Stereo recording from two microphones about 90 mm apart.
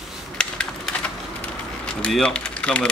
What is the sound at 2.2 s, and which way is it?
Speech, 10° left (ahead or behind).